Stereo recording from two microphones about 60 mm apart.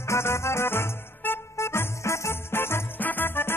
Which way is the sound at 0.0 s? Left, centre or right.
Left.